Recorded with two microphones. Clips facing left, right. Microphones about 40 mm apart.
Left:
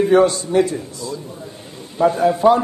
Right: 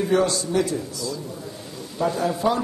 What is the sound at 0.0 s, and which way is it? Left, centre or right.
A woman's voice, left.